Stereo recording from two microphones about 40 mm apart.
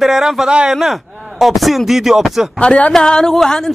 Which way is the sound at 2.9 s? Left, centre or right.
Centre.